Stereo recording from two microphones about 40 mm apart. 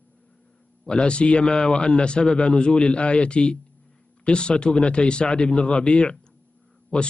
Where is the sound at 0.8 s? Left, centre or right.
Left.